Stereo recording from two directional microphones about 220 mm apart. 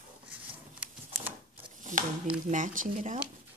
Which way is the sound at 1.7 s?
35° right (ahead or behind).